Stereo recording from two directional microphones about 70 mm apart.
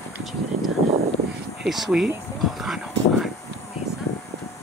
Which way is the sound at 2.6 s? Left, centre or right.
Centre.